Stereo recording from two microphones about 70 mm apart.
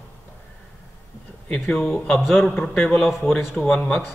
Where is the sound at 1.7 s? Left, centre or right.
Centre.